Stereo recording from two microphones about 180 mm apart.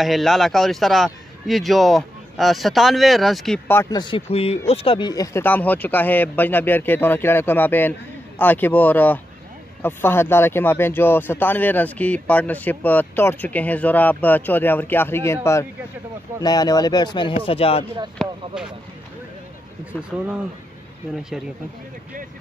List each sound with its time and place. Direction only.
0.0 s a man's voice: centre (ahead or behind)
3.9 s a man's voice: 25° left (ahead or behind)
16.4 s speech: 20° left (ahead or behind)
18.2 s a man's voice: centre (ahead or behind)